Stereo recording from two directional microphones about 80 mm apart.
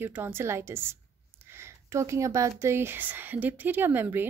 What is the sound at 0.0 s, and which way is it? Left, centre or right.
A woman's voice, right.